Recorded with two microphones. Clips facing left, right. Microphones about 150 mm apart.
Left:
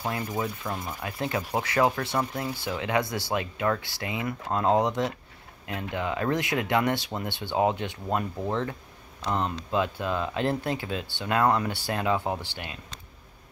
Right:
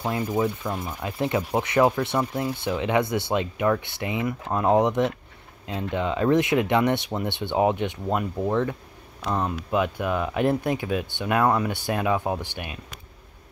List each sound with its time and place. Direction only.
0.4 s speech: centre (ahead or behind)
1.0 s speech: 20° right (ahead or behind)